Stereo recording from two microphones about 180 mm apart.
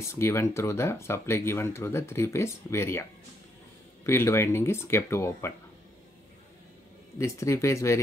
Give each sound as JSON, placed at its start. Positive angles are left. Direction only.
{"t": 0.0, "sound": "speech", "side_deg": 15}
{"t": 7.2, "sound": "speech", "side_deg": 15}